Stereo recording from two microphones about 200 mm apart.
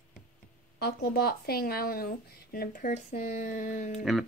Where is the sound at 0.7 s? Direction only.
50° left (ahead or behind).